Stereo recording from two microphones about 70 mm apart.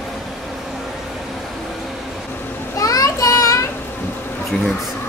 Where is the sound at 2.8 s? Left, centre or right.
Left.